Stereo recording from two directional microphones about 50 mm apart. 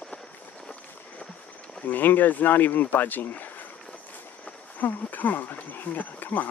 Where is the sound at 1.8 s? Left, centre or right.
Left.